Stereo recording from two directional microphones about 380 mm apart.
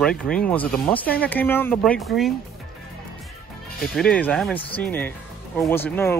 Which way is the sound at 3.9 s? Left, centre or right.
Centre.